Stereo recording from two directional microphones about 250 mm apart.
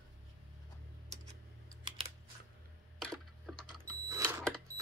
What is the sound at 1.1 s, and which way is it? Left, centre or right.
Tick-tock, right.